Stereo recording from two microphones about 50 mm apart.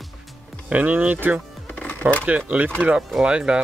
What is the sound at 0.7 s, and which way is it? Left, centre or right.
Speech, right.